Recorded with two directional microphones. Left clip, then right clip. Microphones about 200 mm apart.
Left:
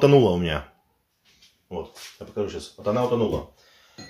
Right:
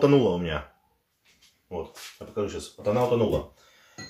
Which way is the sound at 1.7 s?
25° left (ahead or behind).